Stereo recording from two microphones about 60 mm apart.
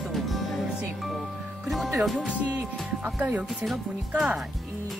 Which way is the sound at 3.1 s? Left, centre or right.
Right.